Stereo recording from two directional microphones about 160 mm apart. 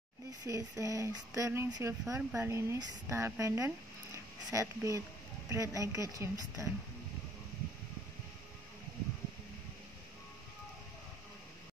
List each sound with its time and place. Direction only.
0.4 s speech: 20° right (ahead or behind)